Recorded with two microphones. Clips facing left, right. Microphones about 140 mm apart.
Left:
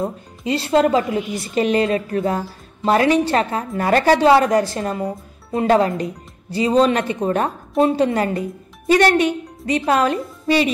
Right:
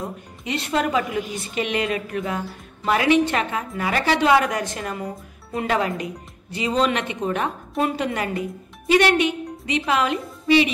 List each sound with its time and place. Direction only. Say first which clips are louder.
0.0 s a woman's voice: left 7 dB; 30° left (ahead or behind)